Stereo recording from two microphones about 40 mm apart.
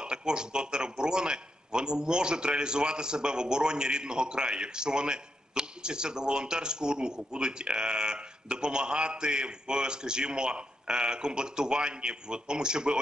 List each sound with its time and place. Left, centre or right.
0.0 s a man's voice: right